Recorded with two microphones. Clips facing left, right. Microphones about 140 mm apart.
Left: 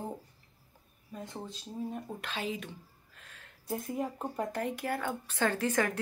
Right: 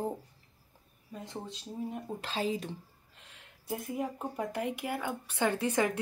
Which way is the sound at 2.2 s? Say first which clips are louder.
Right 6 dB; 35° right (ahead or behind).